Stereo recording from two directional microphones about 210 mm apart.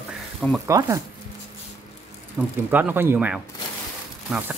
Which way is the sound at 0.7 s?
15° right (ahead or behind).